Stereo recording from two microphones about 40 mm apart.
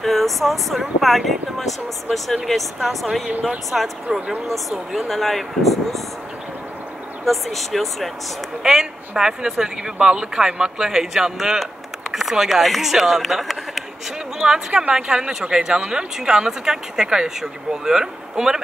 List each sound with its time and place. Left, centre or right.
0.0 s speech: centre
3.7 s speech: right
4.6 s speech: centre
7.2 s speech: centre
8.6 s speech: centre
13.3 s speech: centre
14.4 s speech: centre